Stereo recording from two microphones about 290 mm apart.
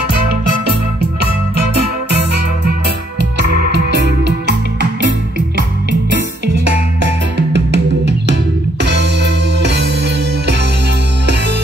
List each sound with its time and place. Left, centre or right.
3.2 s music: right
7.0 s music: right